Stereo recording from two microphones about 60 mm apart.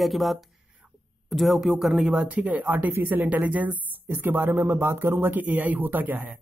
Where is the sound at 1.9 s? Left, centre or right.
Centre.